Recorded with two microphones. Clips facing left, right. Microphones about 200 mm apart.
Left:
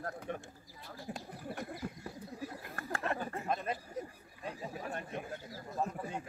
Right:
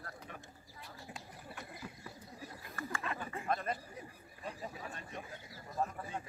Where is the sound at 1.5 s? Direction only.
50° left (ahead or behind).